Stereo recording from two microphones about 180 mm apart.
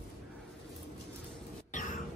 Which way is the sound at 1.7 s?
45° left (ahead or behind).